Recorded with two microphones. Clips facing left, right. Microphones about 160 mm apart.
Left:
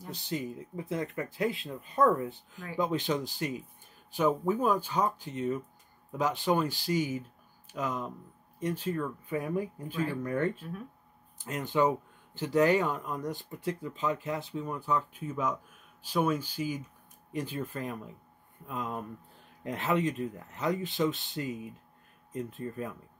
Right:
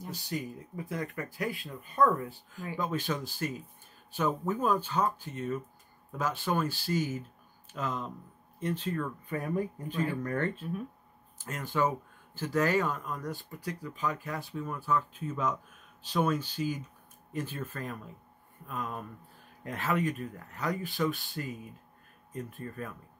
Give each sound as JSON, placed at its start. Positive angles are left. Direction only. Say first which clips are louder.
{"t": 0.1, "sound": "speech", "louder": "left 3 dB", "side_deg": 20}